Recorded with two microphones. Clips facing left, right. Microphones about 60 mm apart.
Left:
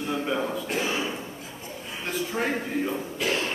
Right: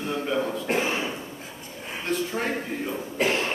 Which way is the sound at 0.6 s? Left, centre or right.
Right.